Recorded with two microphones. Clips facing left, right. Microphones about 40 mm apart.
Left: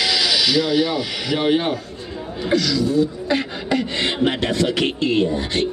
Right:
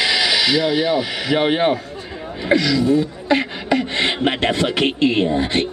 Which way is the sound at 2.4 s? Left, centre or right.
Right.